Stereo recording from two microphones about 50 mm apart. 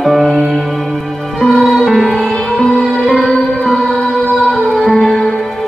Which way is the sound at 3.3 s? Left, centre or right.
Centre.